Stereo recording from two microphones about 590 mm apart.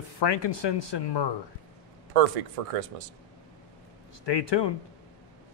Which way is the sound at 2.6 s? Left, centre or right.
Right.